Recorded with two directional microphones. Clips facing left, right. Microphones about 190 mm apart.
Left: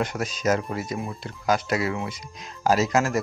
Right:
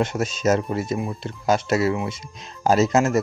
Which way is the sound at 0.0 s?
25° right (ahead or behind).